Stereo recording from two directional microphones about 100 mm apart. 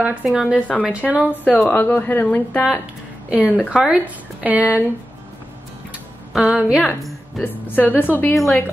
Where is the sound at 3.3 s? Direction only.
15° right (ahead or behind).